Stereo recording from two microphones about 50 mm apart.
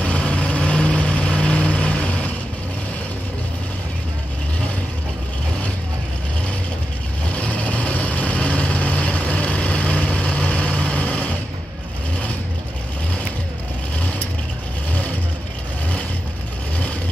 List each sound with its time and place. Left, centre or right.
0.0 s vehicle: left
7.3 s vehicle: left